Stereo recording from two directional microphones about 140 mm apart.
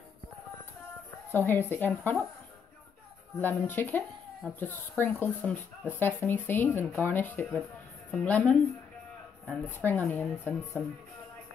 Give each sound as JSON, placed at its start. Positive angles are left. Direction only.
{"t": 1.3, "sound": "speech", "side_deg": 15}
{"t": 3.3, "sound": "speech", "side_deg": 15}